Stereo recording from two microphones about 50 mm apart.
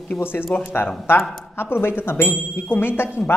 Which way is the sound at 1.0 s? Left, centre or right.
Left.